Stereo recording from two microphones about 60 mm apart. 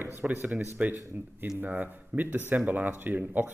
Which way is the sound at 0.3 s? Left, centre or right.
Right.